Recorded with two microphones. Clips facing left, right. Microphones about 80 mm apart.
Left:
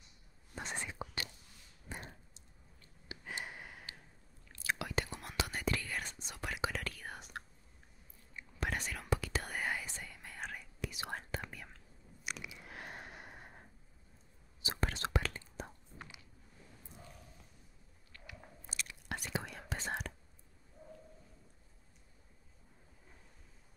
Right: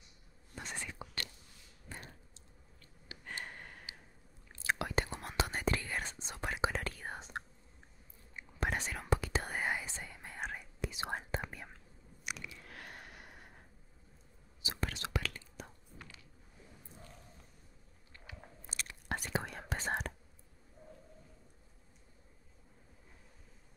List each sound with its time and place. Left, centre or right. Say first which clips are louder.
0.6 s whispering: left 2 dB; left
1.9 s a sound: left 2 dB; centre
3.1 s gasp: left 3 dB; left
3.4 s gasp: left 1 dB; centre
4.5 s whispering: right 3 dB; right
8.6 s whispering: right 2 dB; right
12.4 s a sound: left 2 dB; centre
14.6 s whispering: left 2 dB; left
18.1 s biting: left 1 dB; right
18.7 s whispering: right 3 dB; right